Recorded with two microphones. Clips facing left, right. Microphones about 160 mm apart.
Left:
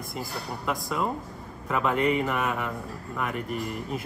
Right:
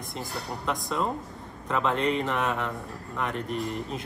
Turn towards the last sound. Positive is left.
turn(degrees=5)  # may be behind; listen again after turning